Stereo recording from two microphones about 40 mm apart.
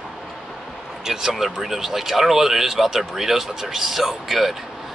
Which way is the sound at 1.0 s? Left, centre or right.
Centre.